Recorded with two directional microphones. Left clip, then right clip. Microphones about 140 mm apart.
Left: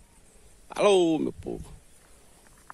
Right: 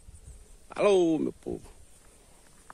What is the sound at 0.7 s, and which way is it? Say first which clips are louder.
Speech: left 2 dB; 15° left (ahead or behind).